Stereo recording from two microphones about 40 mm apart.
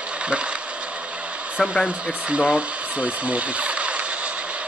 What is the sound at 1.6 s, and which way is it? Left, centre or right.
Speech, centre.